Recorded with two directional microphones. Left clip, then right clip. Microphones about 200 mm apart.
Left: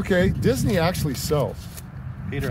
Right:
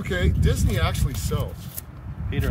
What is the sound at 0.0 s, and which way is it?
Speech, 60° left (ahead or behind).